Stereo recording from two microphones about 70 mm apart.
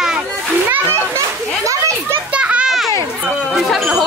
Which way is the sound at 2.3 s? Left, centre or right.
Centre.